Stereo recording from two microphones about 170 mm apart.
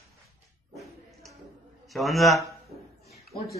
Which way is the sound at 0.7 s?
Centre (ahead or behind).